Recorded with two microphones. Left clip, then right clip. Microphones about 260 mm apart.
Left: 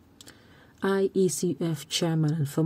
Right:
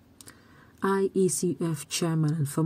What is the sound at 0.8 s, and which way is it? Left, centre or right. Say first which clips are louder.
Speech: even; centre.